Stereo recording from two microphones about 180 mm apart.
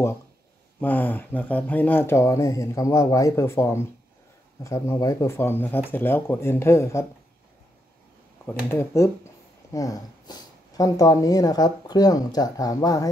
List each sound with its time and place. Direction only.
0.7 s speech: 10° left (ahead or behind)
8.6 s speech: 15° left (ahead or behind)